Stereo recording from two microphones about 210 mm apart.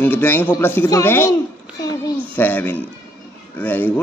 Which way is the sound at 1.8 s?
15° left (ahead or behind).